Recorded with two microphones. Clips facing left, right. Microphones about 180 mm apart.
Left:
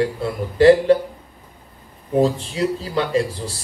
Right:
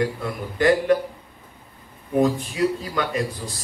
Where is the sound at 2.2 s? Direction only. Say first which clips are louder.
Left 1 dB; 30° left (ahead or behind).